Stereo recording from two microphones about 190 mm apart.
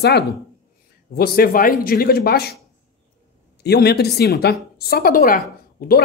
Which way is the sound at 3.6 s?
60° left (ahead or behind).